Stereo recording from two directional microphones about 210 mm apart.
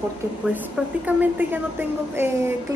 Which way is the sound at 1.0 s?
10° right (ahead or behind).